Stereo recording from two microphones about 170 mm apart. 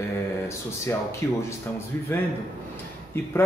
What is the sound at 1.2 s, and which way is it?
Speech, 15° left (ahead or behind).